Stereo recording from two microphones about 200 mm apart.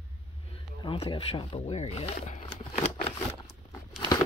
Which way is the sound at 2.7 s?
35° left (ahead or behind).